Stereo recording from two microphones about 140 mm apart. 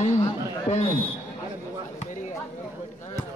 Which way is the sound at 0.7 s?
50° left (ahead or behind).